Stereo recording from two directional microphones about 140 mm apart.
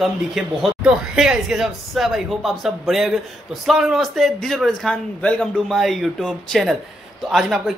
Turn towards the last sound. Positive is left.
turn(degrees=0)  # may be behind; listen again after turning